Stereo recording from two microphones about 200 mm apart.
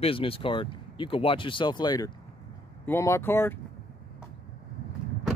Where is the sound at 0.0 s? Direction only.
25° left (ahead or behind); by 3.5 s 10° left (ahead or behind).